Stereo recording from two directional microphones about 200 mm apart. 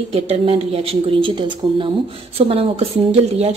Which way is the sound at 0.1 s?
30° right (ahead or behind).